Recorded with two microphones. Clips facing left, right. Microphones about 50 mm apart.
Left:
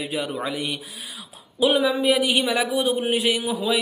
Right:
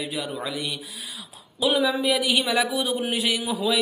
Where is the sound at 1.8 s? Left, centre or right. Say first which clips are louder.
Left 3 dB; centre.